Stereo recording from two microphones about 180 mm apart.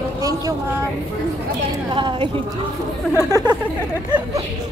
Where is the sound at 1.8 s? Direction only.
25° right (ahead or behind).